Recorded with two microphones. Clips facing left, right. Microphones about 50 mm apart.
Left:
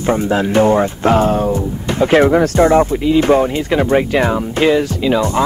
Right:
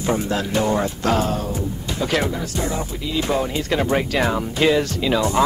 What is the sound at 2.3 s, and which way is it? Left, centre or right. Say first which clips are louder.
Speech: left 15 dB; left.